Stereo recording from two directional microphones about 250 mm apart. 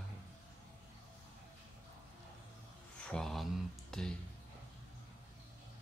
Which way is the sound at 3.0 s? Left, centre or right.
Centre.